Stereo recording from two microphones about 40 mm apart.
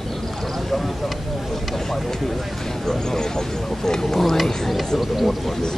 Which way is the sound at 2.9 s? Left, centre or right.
Centre.